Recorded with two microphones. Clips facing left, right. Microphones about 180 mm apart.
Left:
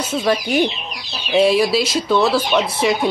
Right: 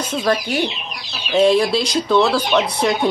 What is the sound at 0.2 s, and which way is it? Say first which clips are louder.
Speech: left 2 dB; 10° left (ahead or behind).